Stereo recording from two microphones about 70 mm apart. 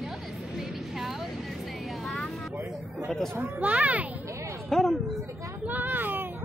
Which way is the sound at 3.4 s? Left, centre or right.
Right.